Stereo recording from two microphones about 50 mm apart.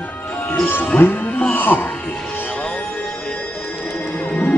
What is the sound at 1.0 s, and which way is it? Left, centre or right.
Speech, left.